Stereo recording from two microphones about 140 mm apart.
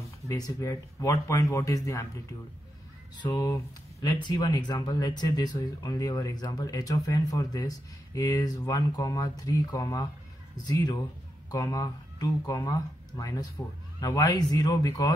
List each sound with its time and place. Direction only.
0.3 s speech: 25° left (ahead or behind)
3.2 s speech: 25° left (ahead or behind)